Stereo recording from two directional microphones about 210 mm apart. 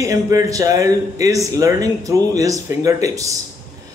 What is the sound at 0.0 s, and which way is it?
Speech, 15° right (ahead or behind).